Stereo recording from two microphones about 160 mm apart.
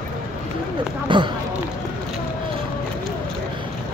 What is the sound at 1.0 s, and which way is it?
Speech, 30° right (ahead or behind).